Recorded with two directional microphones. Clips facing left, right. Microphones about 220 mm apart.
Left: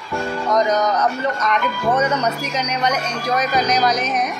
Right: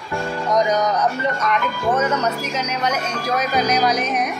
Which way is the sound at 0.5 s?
10° right (ahead or behind).